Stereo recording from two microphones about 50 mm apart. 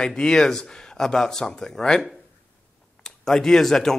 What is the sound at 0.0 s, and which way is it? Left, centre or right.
Speech, centre.